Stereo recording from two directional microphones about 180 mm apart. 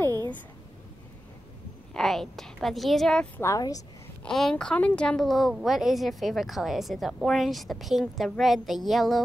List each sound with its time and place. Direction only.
2.0 s a woman's voice: centre (ahead or behind)
3.4 s speech: 20° left (ahead or behind)
4.2 s a woman's voice: 5° left (ahead or behind)